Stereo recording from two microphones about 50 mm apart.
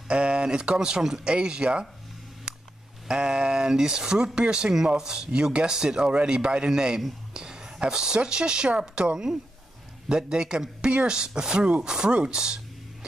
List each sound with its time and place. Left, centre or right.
0.1 s speech: right
3.1 s speech: centre